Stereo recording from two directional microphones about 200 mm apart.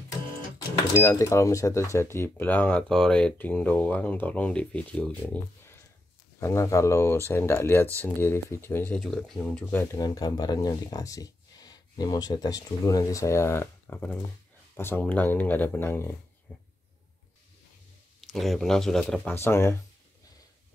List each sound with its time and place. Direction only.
0.9 s speech: 15° left (ahead or behind)
9.9 s speech: 20° left (ahead or behind)
16.5 s a sound: 10° left (ahead or behind)
18.2 s speech: centre (ahead or behind)